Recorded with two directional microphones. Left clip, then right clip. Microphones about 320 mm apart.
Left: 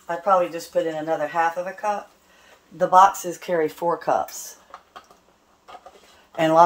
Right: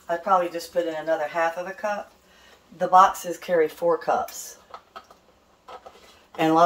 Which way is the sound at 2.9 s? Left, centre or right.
Left.